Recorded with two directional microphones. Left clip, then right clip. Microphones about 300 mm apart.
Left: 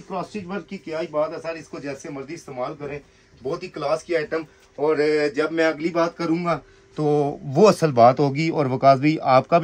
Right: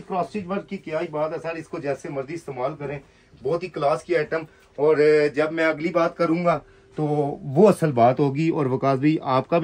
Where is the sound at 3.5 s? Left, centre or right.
Centre.